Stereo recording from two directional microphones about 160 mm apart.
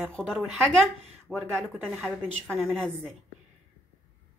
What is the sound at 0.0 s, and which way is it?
A woman's voice, 5° left (ahead or behind).